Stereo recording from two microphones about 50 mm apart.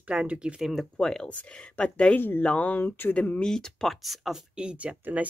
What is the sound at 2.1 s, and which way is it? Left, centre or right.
Speech, left.